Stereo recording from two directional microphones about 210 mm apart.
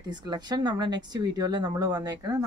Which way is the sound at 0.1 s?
20° right (ahead or behind).